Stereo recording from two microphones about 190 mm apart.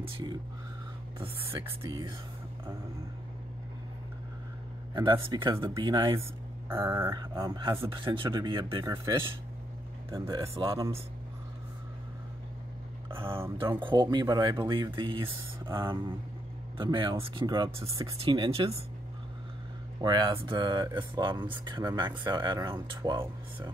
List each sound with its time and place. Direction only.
1.2 s speech: 30° right (ahead or behind)
4.9 s speech: 20° right (ahead or behind)
10.1 s speech: 15° right (ahead or behind)
10.6 s speech: 25° right (ahead or behind)
13.1 s speech: 25° right (ahead or behind)
20.0 s speech: 25° right (ahead or behind)